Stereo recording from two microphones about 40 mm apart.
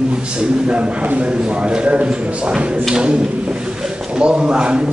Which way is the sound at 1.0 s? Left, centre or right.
Right.